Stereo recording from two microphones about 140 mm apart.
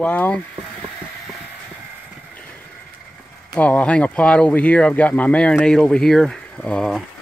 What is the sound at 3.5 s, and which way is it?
Speech, 10° left (ahead or behind).